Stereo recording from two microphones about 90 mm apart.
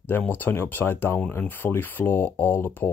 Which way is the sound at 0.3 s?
20° left (ahead or behind).